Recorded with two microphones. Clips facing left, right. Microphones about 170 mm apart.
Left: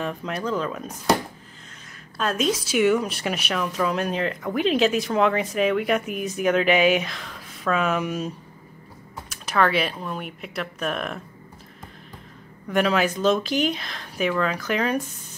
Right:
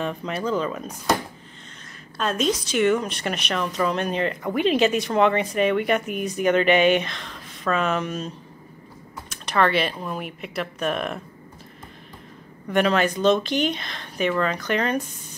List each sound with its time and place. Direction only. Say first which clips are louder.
0.0 s speech: right 1 dB; centre (ahead or behind)
2.1 s speech: even; centre (ahead or behind)
9.3 s speech: right 1 dB; centre (ahead or behind)
12.6 s speech: right 1 dB; centre (ahead or behind)